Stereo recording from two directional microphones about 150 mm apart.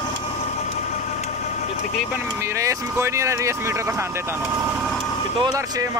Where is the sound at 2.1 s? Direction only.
20° right (ahead or behind).